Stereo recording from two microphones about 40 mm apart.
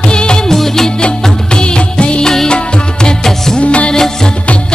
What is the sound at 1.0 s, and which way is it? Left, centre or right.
Music of bollywood, left.